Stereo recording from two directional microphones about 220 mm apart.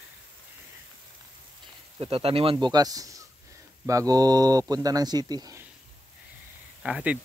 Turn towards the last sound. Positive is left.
turn(degrees=-5)  # may be behind; listen again after turning